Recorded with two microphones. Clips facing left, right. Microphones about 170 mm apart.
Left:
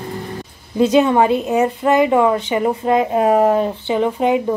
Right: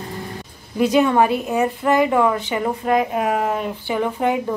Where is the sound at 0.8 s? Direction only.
20° left (ahead or behind).